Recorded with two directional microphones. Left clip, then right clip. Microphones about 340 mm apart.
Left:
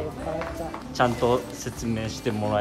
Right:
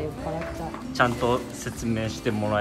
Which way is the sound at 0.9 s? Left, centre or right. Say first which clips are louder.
Left 1 dB; centre.